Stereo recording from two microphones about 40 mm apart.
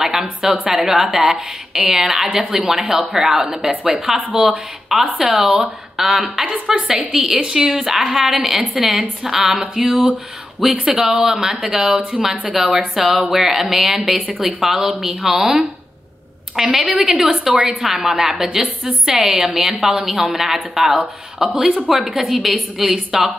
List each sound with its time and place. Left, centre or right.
0.0 s a woman's voice: centre
0.8 s a woman's voice: centre
5.0 s a woman's voice: right
5.3 s a woman's voice: centre
7.3 s a woman's voice: centre
17.1 s a woman's voice: right
17.8 s a woman's voice: centre